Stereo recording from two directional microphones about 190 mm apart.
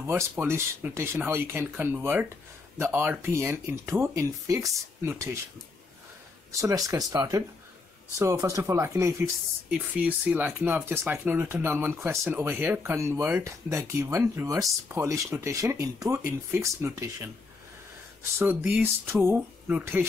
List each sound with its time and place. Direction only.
0.0 s speech: 10° right (ahead or behind)
6.5 s speech: 15° right (ahead or behind)
18.4 s speech: 10° right (ahead or behind)